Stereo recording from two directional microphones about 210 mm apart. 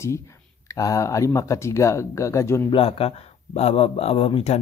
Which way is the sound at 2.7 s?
25° left (ahead or behind).